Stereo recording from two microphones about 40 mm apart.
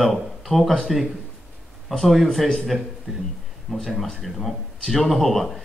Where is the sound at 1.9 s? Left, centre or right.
Centre.